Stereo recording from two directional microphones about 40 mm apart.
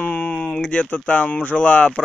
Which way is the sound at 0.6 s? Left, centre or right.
Left.